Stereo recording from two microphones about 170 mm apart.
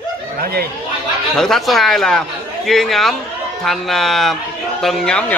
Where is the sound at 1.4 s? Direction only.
Centre (ahead or behind).